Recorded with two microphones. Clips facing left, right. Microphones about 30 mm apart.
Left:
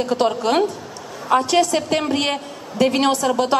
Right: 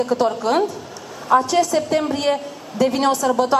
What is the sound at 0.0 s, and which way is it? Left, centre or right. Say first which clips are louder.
Speech: even; left.